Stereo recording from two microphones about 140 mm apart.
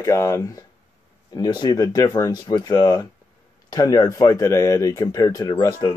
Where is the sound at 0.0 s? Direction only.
20° left (ahead or behind).